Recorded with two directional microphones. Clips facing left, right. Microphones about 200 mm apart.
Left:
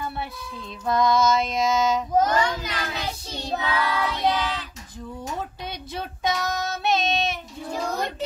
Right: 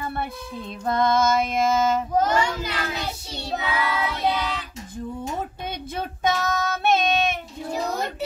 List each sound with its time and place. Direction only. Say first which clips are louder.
0.8 s female singing: even; 55° right (ahead or behind)
2.2 s child singing: even; 10° right (ahead or behind)
5.7 s child singing: right 3 dB; 50° right (ahead or behind)
7.7 s a sound: right 1 dB; 10° right (ahead or behind)